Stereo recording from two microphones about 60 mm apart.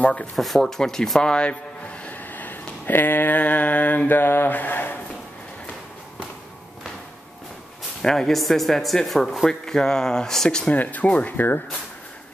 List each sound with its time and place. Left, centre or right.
0.0 s speech: centre
0.4 s speech: centre
1.2 s speech: centre
2.0 s a sound: left
8.0 s speech: centre
10.7 s speech: left